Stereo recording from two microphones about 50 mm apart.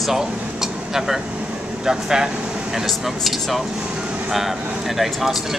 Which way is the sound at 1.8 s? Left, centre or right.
Centre.